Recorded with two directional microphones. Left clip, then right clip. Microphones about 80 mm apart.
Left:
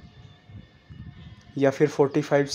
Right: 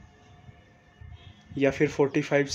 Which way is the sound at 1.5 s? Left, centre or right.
Centre.